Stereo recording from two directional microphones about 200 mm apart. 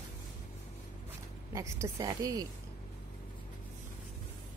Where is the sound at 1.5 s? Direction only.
15° right (ahead or behind).